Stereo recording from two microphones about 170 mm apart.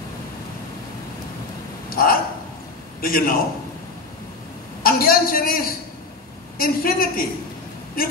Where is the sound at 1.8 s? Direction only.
60° left (ahead or behind).